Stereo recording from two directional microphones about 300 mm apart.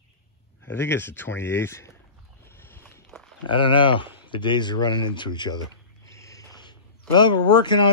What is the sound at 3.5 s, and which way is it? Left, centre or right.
Speech, centre.